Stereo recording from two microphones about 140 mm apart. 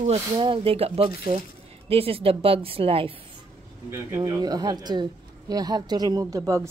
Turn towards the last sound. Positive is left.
turn(degrees=-20)  # may be behind; listen again after turning